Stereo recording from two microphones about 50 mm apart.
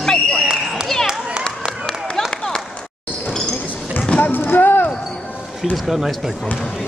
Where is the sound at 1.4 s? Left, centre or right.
Centre.